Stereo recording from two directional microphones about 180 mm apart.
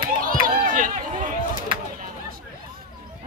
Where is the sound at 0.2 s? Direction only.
50° right (ahead or behind).